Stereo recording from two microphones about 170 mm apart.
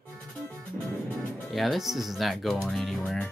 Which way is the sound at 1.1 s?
Centre (ahead or behind).